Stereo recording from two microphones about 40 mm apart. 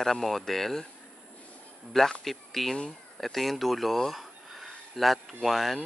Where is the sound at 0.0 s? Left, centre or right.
Centre.